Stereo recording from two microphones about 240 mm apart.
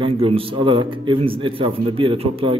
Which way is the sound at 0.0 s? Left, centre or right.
Right.